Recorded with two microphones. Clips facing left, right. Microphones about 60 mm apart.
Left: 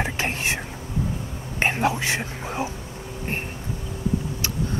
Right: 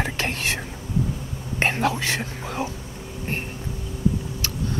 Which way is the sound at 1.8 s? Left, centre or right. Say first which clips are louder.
Even; centre.